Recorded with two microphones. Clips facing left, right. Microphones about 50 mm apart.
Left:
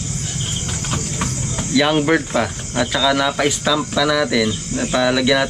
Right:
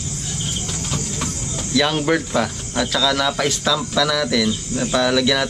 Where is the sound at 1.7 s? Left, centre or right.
Centre.